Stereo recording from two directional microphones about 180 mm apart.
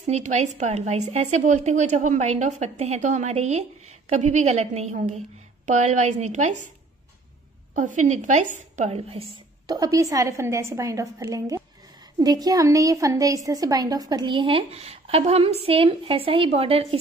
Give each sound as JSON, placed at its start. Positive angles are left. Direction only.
{"t": 0.0, "sound": "a woman's voice", "side_deg": -40}
{"t": 7.7, "sound": "a woman's voice", "side_deg": -45}
{"t": 9.7, "sound": "a woman's voice", "side_deg": -20}